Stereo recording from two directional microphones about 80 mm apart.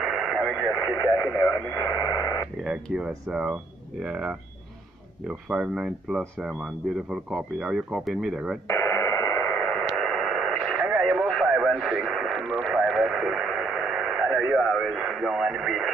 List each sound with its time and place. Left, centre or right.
0.0 s radio: centre
2.0 s radio: left
2.6 s speech: centre
8.6 s radio: left
9.5 s radio: centre
9.8 s radio: centre